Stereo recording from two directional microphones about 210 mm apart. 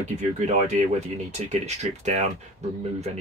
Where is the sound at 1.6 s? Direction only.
35° right (ahead or behind).